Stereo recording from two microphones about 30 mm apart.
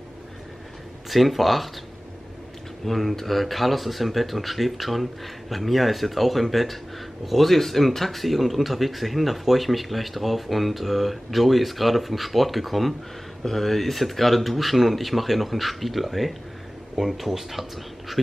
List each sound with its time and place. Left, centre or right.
1.1 s speech: centre
2.8 s speech: centre